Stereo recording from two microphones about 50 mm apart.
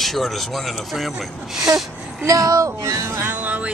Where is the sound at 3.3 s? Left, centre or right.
Right.